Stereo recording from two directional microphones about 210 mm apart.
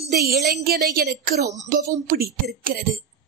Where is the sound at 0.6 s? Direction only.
45° right (ahead or behind).